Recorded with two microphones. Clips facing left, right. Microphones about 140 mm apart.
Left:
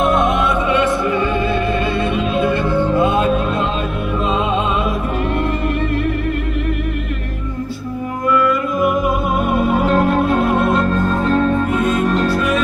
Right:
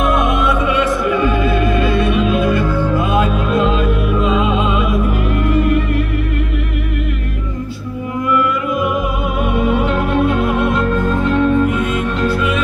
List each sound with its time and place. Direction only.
0.0 s music: 25° left (ahead or behind)
9.5 s music: 40° left (ahead or behind)